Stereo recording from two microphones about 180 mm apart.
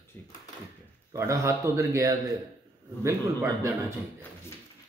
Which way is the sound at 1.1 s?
15° right (ahead or behind).